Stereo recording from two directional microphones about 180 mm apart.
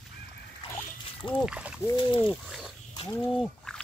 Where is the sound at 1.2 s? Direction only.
25° left (ahead or behind).